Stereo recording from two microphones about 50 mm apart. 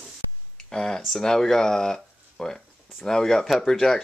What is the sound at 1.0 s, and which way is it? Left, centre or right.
Speech, centre.